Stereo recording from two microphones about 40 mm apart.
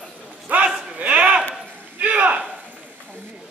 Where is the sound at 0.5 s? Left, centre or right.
Right.